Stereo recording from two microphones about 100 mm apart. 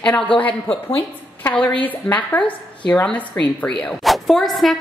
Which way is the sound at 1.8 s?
15° left (ahead or behind).